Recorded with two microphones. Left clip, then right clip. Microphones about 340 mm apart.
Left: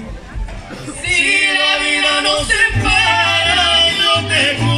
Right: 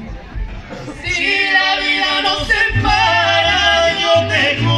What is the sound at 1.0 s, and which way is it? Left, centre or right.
Singing, centre.